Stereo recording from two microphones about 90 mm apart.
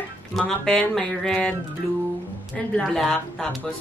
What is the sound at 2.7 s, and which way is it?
Speech, 5° left (ahead or behind).